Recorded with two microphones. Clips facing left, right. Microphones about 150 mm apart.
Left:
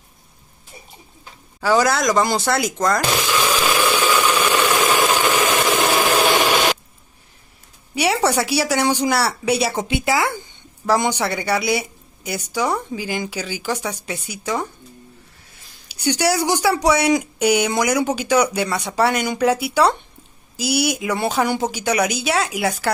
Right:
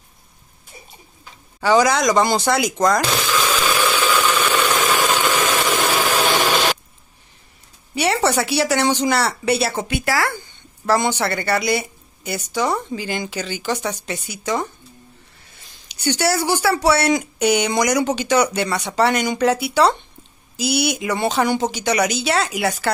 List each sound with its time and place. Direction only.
1.6 s speech: centre (ahead or behind)
3.3 s a sound: 10° left (ahead or behind)
5.0 s vehicle: 15° left (ahead or behind)
6.0 s engine: 15° left (ahead or behind)
7.9 s speech: 10° left (ahead or behind)
15.9 s speech: 10° left (ahead or behind)